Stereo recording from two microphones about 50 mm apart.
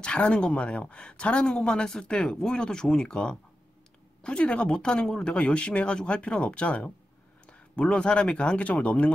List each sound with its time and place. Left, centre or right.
0.0 s speech: left